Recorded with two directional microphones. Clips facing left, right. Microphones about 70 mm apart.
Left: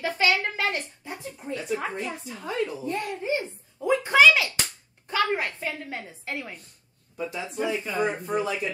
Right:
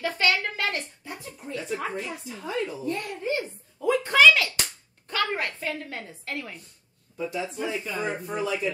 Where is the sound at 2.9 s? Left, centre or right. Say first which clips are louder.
Left 1 dB; centre.